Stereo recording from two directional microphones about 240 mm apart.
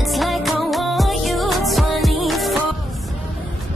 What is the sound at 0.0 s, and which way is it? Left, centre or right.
Music, centre.